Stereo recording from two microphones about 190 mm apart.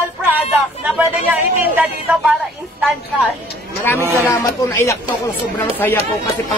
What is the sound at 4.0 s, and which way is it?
Speech, 10° right (ahead or behind).